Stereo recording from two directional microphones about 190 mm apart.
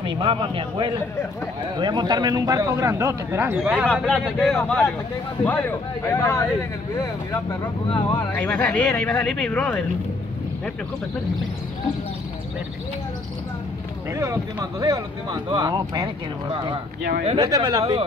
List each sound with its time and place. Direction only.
0.0 s a man's voice: 25° right (ahead or behind); by 3.8 s 5° right (ahead or behind)
3.8 s speech: 5° left (ahead or behind)
7.9 s speech: 25° left (ahead or behind)
8.4 s speech: 5° left (ahead or behind)
14.1 s speech: 20° right (ahead or behind)